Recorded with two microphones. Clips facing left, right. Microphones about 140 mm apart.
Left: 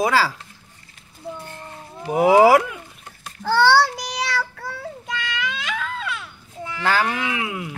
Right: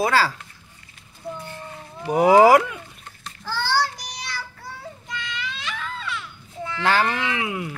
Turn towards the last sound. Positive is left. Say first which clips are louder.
# even
turn(degrees=0)  # may be behind; listen again after turning